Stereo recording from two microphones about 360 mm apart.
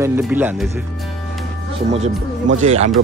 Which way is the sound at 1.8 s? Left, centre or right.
Centre.